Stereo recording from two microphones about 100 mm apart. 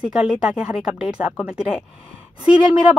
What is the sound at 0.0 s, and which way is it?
Speech, 10° right (ahead or behind).